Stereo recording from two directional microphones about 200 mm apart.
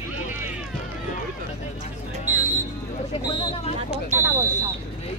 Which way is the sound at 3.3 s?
25° left (ahead or behind).